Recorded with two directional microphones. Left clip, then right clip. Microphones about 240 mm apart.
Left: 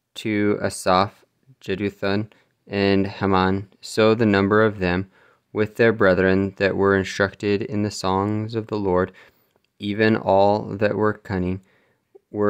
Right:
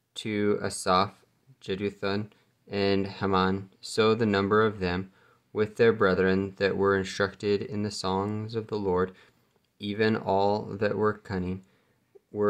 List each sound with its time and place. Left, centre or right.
0.1 s speech: left